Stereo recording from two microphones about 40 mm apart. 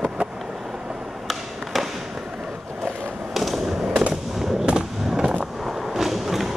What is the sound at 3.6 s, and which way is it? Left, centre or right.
Skateboard, centre.